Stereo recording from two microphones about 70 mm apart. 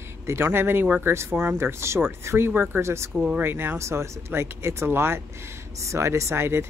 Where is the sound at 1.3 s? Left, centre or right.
Right.